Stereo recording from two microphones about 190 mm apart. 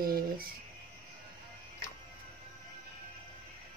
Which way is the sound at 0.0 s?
50° right (ahead or behind).